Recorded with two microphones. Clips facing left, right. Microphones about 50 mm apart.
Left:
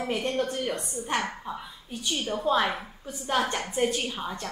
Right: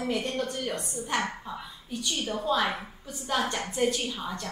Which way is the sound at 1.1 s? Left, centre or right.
Centre.